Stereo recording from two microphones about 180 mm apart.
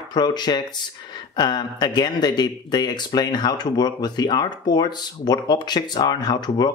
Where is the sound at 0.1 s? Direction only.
25° left (ahead or behind).